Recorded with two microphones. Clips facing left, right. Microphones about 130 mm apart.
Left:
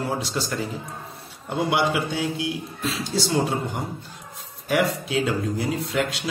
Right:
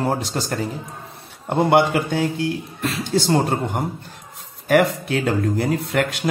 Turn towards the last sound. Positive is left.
turn(degrees=-55)  # may be behind; listen again after turning